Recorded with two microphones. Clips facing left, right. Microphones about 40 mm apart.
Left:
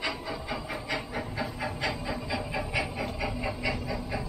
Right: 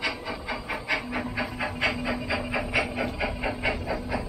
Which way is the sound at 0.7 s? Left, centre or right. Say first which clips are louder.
Right 7 dB; right.